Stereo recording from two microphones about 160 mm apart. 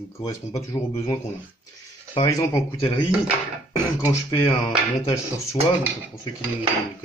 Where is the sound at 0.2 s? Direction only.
20° left (ahead or behind).